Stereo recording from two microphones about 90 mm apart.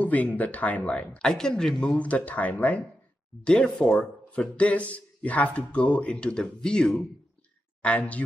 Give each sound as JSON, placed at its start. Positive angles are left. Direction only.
{"t": 0.0, "sound": "speech", "side_deg": 20}